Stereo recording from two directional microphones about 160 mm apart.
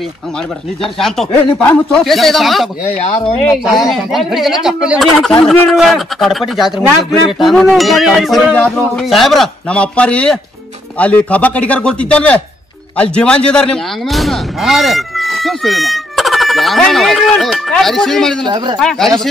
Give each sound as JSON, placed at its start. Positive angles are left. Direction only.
{"t": 0.9, "sound": "speech", "side_deg": 0}
{"t": 3.0, "sound": "speech", "side_deg": 40}
{"t": 3.6, "sound": "a man's voice", "side_deg": 0}
{"t": 18.4, "sound": "speech", "side_deg": -30}
{"t": 18.8, "sound": "speech", "side_deg": 0}